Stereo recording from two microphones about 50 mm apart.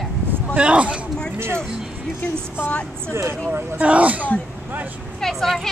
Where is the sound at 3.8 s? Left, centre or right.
Right.